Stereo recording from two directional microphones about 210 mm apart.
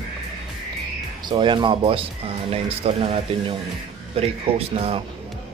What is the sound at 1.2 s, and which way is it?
Speech, 20° right (ahead or behind).